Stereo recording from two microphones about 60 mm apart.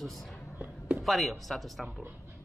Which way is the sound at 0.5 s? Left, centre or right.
Right.